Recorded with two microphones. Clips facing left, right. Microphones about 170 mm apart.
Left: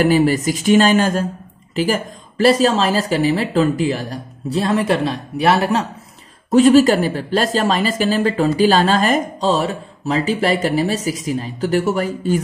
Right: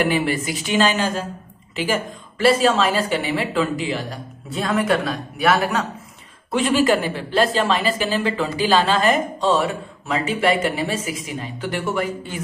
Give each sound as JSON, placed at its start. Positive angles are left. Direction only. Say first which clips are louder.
{"t": 0.0, "sound": "speech", "louder": "left 6 dB", "side_deg": 40}